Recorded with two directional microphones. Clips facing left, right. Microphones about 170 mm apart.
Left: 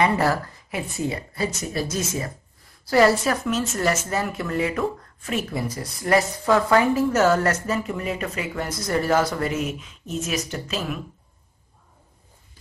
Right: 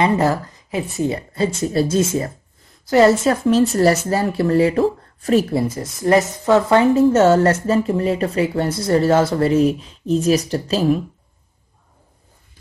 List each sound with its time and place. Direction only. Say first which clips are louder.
0.0 s speech: right 4 dB; 25° right (ahead or behind)